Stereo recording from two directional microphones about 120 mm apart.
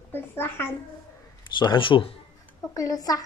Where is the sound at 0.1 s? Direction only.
20° left (ahead or behind).